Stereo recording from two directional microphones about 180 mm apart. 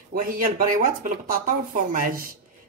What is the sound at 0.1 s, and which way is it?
Speech, 50° right (ahead or behind).